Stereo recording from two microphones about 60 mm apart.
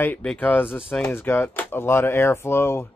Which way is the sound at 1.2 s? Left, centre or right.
Left.